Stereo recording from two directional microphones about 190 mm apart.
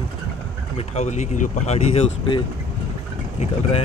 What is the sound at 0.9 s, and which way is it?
Speech, 35° left (ahead or behind).